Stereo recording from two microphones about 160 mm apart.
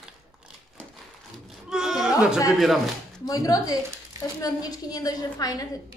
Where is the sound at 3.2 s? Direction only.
20° left (ahead or behind).